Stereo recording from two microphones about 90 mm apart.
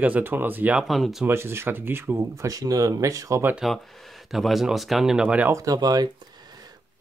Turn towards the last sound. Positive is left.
turn(degrees=-50)  # may be behind; listen again after turning